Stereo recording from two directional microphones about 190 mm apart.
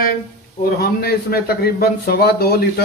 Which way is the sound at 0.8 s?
55° left (ahead or behind).